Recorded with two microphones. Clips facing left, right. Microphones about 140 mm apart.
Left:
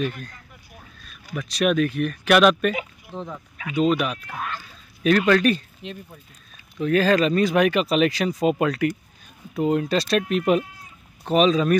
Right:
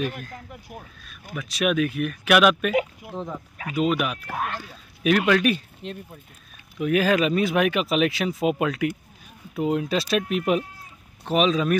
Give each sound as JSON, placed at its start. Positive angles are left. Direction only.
{"t": 1.3, "sound": "speech", "side_deg": -5}
{"t": 2.7, "sound": "a sound", "side_deg": -70}
{"t": 3.1, "sound": "speech", "side_deg": -5}
{"t": 4.4, "sound": "speech", "side_deg": -65}
{"t": 5.0, "sound": "speech", "side_deg": -5}